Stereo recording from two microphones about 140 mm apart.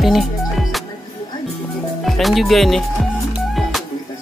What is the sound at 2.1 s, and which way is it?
Speech, centre (ahead or behind).